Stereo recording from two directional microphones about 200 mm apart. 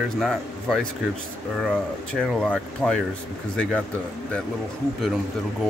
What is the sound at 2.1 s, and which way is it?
Speech, 5° left (ahead or behind).